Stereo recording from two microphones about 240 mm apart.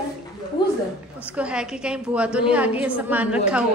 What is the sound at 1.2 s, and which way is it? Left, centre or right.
A woman's voice, centre.